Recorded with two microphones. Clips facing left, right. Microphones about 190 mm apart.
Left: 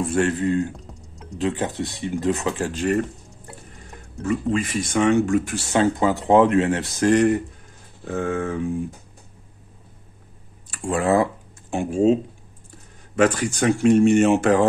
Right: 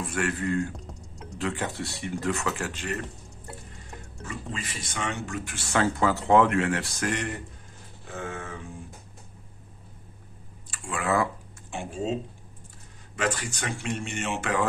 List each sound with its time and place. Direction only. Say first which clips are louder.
0.0 s speech: left 8 dB; 25° left (ahead or behind)
0.7 s typing: even; centre (ahead or behind)
1.4 s speech: left 7 dB; 20° left (ahead or behind)
2.7 s speech: left 12 dB; 40° left (ahead or behind)
4.3 s speech: left 15 dB; 55° left (ahead or behind)
5.7 s speech: left 4 dB; 20° left (ahead or behind)
8.1 s speech: left 12 dB; 55° left (ahead or behind)
10.7 s speech: left 8 dB; 40° left (ahead or behind)
11.7 s speech: left 11 dB; 45° left (ahead or behind)
13.1 s speech: left 10 dB; 45° left (ahead or behind)